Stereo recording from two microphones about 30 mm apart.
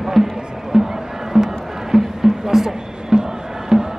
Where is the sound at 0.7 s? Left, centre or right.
Centre.